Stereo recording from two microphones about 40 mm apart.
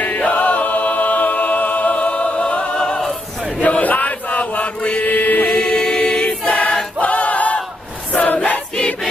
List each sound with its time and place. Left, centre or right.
0.0 s chant: left
3.6 s chant: left
5.0 s mantra: left
5.5 s choir: left